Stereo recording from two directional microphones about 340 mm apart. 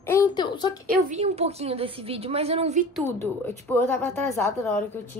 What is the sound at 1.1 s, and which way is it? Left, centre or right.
A woman's voice, centre.